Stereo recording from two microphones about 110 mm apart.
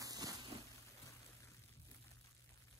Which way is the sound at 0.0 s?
35° right (ahead or behind).